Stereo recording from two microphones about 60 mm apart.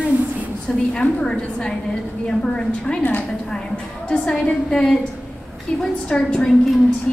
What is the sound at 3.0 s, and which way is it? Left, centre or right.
Speech, left.